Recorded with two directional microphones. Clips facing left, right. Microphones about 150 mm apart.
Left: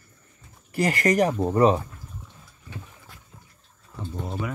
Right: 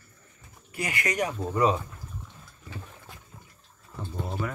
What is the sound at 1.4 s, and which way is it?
Speech, 25° left (ahead or behind).